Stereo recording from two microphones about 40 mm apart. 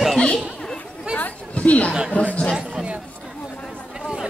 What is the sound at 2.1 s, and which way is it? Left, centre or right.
Speech, left.